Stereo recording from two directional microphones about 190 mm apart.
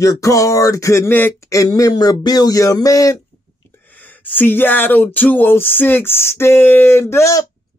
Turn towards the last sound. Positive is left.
turn(degrees=15)  # may be behind; listen again after turning